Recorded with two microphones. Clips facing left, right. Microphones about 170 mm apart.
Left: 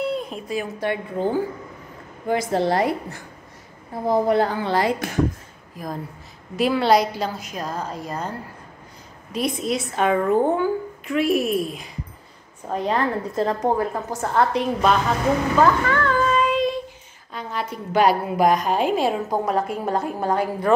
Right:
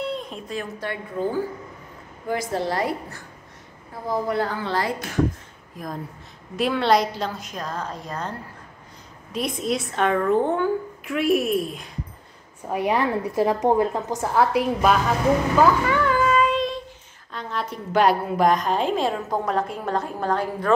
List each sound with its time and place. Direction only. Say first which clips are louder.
0.0 s a sound: left 4 dB; 5° left (ahead or behind)
0.7 s a woman's voice: left 4 dB; 20° left (ahead or behind)
5.8 s a woman's voice: left 2 dB; centre (ahead or behind)
12.6 s a woman's voice: even; 10° right (ahead or behind)
14.3 s a woman's voice: even; 5° right (ahead or behind); by 20.7 s 10° left (ahead or behind)